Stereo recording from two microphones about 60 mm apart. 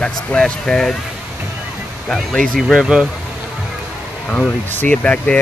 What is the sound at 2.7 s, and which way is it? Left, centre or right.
Speech, centre.